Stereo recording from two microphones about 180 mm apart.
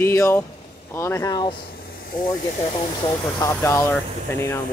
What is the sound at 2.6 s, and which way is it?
Speech, 25° left (ahead or behind).